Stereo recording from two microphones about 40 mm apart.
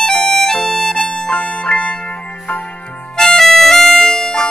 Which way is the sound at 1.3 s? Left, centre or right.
Left.